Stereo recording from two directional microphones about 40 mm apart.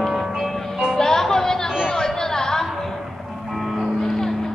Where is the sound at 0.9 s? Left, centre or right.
Centre.